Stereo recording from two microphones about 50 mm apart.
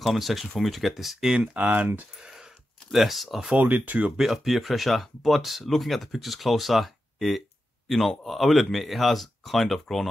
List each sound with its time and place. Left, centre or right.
0.0 s speech: centre
1.4 s speech: right
2.1 s a sound: centre
2.9 s speech: centre
3.5 s speech: right
4.2 s speech: centre